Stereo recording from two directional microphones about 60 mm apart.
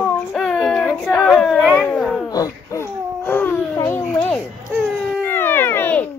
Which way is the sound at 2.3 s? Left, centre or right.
Left.